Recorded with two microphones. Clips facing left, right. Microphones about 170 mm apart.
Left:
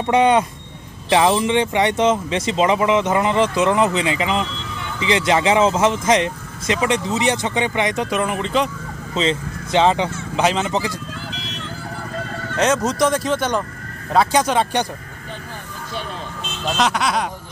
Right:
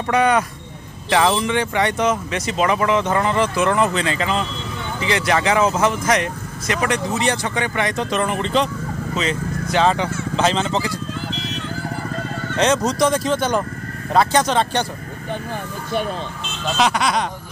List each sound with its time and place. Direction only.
0.0 s speech: 25° left (ahead or behind); by 8.6 s 5° left (ahead or behind)
9.1 s speech: 25° left (ahead or behind)
12.5 s speech: 5° left (ahead or behind)
16.7 s speech: centre (ahead or behind)